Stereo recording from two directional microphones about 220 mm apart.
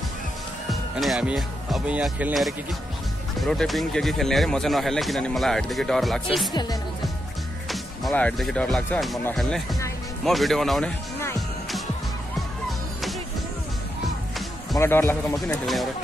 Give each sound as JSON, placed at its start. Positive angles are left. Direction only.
{"t": 0.7, "sound": "speech", "side_deg": 0}
{"t": 6.5, "sound": "speech", "side_deg": 20}
{"t": 7.7, "sound": "speech", "side_deg": 5}
{"t": 12.4, "sound": "music", "side_deg": 0}
{"t": 14.8, "sound": "speech", "side_deg": 10}
{"t": 15.6, "sound": "speech", "side_deg": 0}